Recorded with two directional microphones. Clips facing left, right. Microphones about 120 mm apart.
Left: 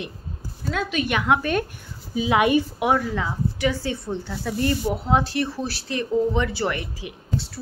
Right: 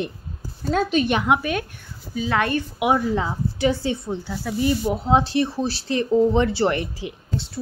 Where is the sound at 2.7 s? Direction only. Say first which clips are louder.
Right 1 dB; 15° right (ahead or behind).